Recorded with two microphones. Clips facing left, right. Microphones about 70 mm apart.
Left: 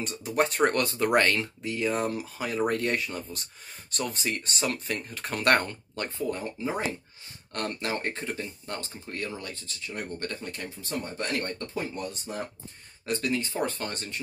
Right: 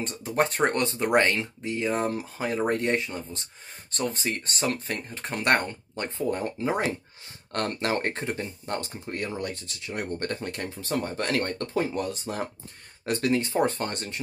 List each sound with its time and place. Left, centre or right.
0.0 s speech: right
6.1 s speech: right
6.4 s speech: right
9.5 s speech: right
10.8 s speech: right
13.0 s speech: right
13.7 s speech: right